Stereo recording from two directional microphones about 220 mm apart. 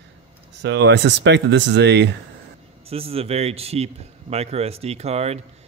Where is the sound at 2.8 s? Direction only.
25° right (ahead or behind).